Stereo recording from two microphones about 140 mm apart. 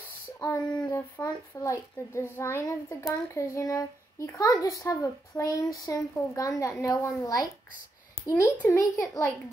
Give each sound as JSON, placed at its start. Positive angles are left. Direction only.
{"t": 0.8, "sound": "a child's voice", "side_deg": 20}